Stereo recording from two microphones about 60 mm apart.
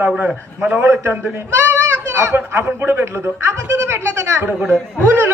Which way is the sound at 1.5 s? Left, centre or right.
Right.